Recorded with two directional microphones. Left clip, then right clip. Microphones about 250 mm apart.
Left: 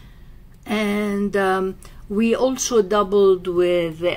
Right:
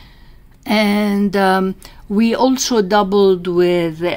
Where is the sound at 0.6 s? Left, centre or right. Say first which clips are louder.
Right 7 dB; right.